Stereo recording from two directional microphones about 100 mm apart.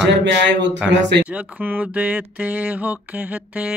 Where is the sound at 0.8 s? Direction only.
10° right (ahead or behind).